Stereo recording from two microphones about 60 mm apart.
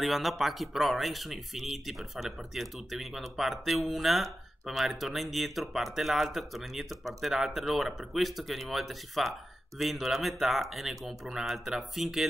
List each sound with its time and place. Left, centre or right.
0.0 s speech: centre